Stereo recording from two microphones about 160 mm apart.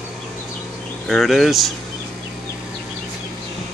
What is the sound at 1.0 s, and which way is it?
Speech, centre (ahead or behind).